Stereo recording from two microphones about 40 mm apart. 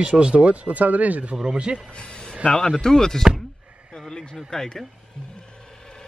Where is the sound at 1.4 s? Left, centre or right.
Right.